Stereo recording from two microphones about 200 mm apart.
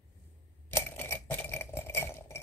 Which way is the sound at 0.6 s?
10° left (ahead or behind).